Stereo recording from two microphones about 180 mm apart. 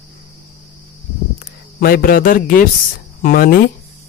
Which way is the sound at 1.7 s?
55° left (ahead or behind).